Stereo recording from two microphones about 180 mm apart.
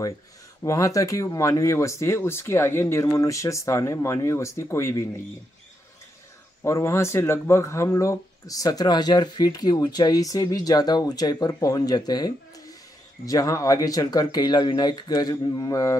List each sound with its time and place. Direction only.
0.7 s speech: 20° left (ahead or behind)
6.6 s speech: 15° left (ahead or behind)